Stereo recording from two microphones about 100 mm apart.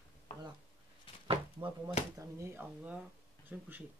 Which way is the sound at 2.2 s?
25° right (ahead or behind).